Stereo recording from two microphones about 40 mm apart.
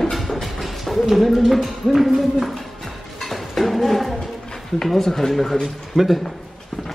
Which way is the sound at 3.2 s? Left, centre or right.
Centre.